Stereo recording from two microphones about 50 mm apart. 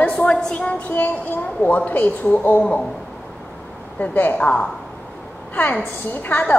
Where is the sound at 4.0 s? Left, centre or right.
Left.